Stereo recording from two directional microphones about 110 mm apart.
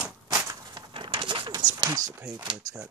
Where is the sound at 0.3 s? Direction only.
40° right (ahead or behind).